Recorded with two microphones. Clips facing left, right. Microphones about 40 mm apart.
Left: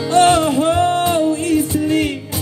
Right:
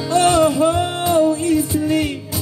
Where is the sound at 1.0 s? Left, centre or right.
Left.